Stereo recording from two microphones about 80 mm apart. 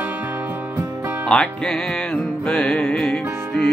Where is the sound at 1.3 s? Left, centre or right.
Centre.